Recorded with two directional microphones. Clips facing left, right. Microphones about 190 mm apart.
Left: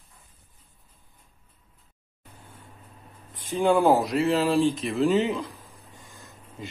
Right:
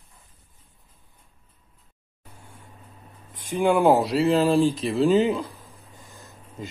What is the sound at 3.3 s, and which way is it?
Speech, 15° right (ahead or behind).